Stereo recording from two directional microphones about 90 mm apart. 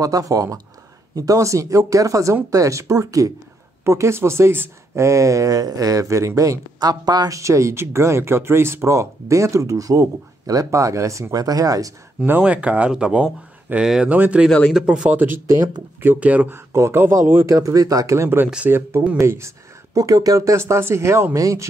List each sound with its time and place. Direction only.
0.0 s speech: 40° right (ahead or behind)
12.3 s speech: 15° right (ahead or behind)
14.7 s speech: 5° right (ahead or behind)
16.5 s speech: 30° right (ahead or behind)